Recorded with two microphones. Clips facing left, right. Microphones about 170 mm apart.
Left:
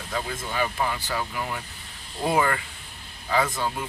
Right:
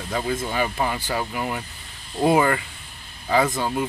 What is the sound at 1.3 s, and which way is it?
Speech, 15° right (ahead or behind).